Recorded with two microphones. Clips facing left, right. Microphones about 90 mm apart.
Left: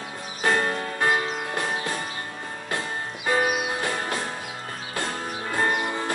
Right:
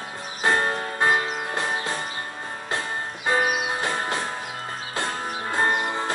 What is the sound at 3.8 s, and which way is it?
Music, 25° right (ahead or behind).